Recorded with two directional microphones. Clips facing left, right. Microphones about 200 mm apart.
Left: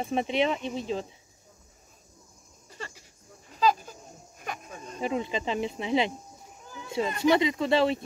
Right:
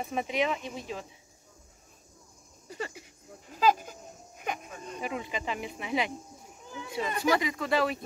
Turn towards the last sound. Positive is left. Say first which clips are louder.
# left 4 dB
turn(degrees=25)  # may be behind; listen again after turning